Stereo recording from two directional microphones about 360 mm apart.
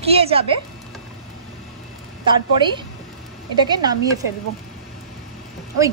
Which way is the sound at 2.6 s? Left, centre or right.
Centre.